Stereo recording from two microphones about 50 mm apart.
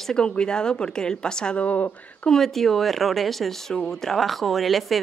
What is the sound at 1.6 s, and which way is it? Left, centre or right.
Speech, left.